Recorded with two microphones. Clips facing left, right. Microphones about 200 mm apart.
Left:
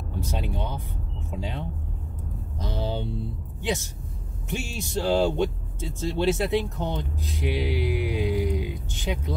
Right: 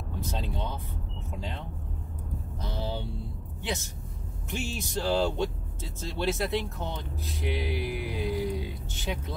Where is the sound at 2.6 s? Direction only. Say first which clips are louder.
Left 5 dB; 20° left (ahead or behind).